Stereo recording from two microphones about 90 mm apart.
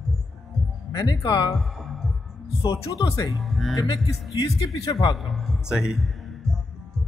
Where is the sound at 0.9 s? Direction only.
50° left (ahead or behind).